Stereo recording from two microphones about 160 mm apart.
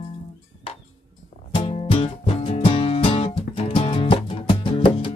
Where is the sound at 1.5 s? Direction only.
30° left (ahead or behind).